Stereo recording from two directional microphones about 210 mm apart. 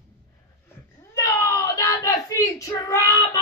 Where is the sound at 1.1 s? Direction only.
15° left (ahead or behind).